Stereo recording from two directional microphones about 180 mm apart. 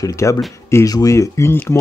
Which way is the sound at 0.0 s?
15° left (ahead or behind).